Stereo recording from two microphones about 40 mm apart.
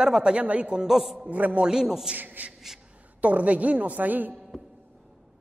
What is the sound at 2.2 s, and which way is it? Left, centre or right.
Speech, right.